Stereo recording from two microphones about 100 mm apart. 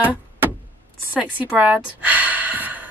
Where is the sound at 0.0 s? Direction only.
15° right (ahead or behind).